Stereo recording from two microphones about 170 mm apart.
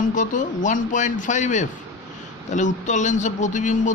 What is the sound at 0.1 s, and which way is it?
A man's voice, 50° left (ahead or behind).